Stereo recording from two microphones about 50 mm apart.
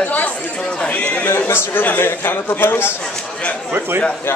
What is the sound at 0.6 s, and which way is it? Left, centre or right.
Speech, centre.